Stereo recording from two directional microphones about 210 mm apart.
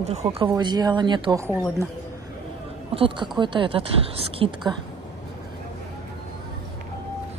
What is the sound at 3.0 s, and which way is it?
A woman's voice, 25° right (ahead or behind).